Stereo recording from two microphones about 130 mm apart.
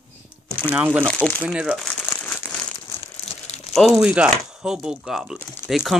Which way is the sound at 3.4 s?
55° left (ahead or behind).